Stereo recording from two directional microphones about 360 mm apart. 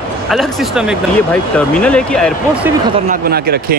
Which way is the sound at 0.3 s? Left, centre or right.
Centre.